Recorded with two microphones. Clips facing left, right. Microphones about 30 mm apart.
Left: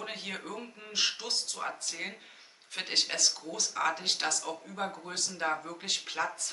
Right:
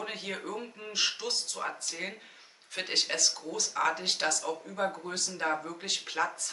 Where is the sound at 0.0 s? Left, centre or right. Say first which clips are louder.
Right 2 dB; centre.